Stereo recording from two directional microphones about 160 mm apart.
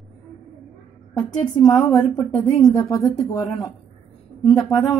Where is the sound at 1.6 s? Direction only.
20° left (ahead or behind).